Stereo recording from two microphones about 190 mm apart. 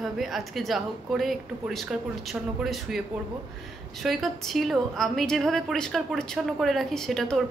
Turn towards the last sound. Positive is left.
turn(degrees=0)  # may be behind; listen again after turning